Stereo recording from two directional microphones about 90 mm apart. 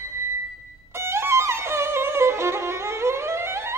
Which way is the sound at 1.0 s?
30° right (ahead or behind).